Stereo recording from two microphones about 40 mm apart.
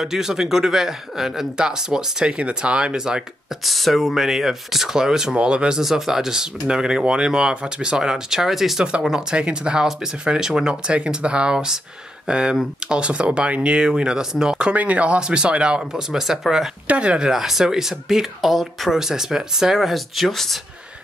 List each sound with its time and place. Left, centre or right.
0.0 s speech: centre
3.0 s speech: centre
3.6 s speech: centre
5.3 s speech: right
5.8 s speech: centre
9.3 s speech: right
13.7 s speech: right
14.7 s speech: right
15.8 s speech: centre
16.8 s speech: right
17.2 s speech: centre